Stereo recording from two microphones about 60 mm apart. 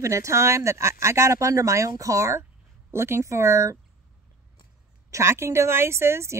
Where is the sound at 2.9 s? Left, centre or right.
Right.